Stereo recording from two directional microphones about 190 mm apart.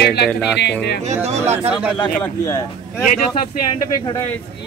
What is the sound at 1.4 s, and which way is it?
Speech, 10° right (ahead or behind).